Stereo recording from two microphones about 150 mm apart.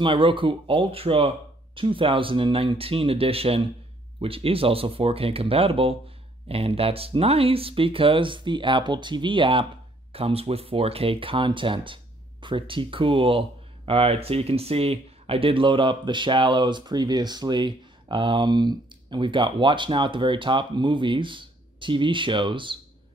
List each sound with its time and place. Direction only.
0.0 s speech: 35° right (ahead or behind)